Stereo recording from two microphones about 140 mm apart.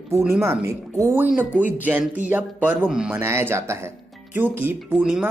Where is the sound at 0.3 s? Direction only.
20° right (ahead or behind).